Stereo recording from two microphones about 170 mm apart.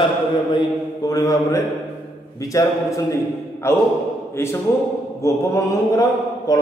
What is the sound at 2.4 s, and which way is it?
Mantra, 20° left (ahead or behind).